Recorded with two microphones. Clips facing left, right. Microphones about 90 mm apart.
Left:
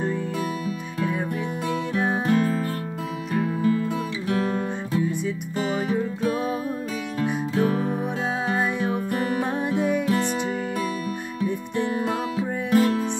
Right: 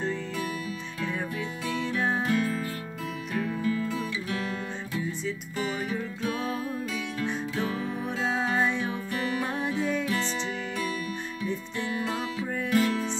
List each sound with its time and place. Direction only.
1.7 s music: 20° left (ahead or behind)
2.2 s music: 35° left (ahead or behind)
6.2 s music: 15° left (ahead or behind)
7.5 s music: 45° left (ahead or behind)
9.1 s music: 35° left (ahead or behind)
9.5 s music: 20° left (ahead or behind)
11.7 s music: 20° left (ahead or behind)
12.7 s music: 45° left (ahead or behind)